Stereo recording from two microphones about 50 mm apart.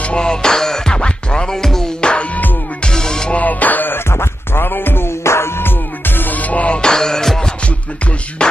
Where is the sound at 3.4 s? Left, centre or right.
Left.